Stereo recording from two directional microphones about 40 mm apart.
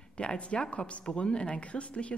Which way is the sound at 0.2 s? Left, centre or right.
Left.